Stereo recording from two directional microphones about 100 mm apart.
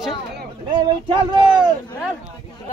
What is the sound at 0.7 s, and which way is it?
Speech, 55° right (ahead or behind).